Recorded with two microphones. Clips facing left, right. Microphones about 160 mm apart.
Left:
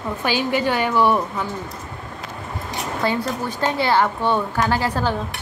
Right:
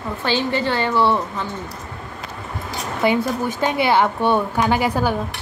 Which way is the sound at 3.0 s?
15° right (ahead or behind).